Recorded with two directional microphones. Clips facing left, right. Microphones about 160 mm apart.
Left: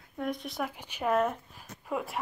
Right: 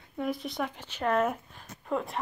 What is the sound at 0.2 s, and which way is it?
Speech, centre (ahead or behind).